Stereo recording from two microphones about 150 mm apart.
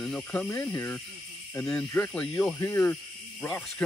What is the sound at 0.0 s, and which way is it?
Speech, 5° left (ahead or behind).